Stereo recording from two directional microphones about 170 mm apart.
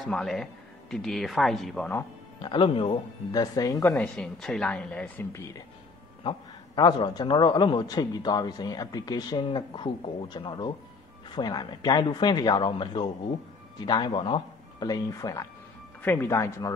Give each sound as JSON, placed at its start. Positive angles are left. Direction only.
{"t": 0.0, "sound": "a man's voice", "side_deg": 5}
{"t": 2.4, "sound": "speech", "side_deg": 30}
{"t": 6.2, "sound": "a man's voice", "side_deg": 25}